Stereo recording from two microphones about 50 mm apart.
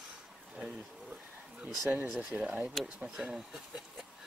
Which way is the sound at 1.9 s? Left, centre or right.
Centre.